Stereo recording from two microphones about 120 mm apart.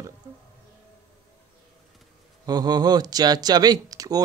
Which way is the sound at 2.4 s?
35° right (ahead or behind).